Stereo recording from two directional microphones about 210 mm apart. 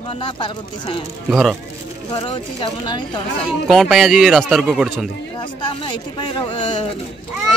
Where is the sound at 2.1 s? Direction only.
20° left (ahead or behind).